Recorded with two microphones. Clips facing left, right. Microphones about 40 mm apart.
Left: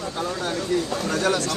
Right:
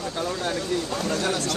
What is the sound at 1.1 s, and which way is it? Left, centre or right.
Speech, left.